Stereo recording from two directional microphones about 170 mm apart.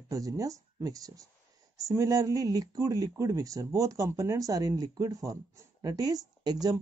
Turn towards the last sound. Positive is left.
turn(degrees=-25)  # may be behind; listen again after turning